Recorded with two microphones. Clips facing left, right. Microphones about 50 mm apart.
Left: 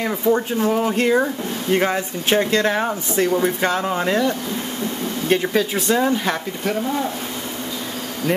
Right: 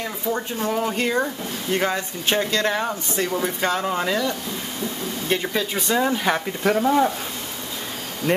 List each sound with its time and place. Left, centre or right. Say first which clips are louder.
0.3 s speech: left 6 dB; centre
5.3 s speech: left 5 dB; centre
6.6 s speech: right 5 dB; right